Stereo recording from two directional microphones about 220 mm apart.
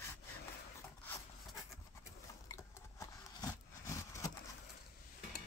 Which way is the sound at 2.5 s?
15° left (ahead or behind).